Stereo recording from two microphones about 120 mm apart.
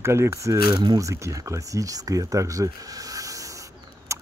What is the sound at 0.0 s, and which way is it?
Speech, 20° right (ahead or behind).